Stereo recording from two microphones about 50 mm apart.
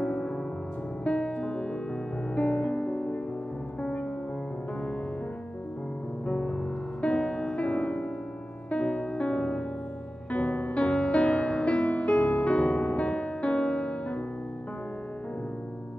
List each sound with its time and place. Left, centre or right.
0.0 s music: left
6.2 s music: left